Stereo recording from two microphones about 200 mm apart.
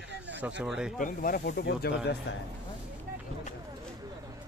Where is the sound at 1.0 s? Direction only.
40° left (ahead or behind); by 2.4 s 60° left (ahead or behind).